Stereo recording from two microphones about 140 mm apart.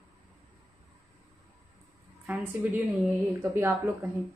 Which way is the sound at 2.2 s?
10° right (ahead or behind).